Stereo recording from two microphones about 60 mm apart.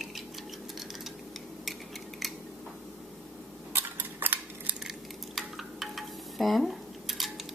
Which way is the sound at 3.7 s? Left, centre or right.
Right.